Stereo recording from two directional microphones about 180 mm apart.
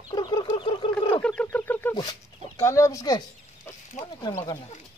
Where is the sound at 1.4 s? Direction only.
10° left (ahead or behind).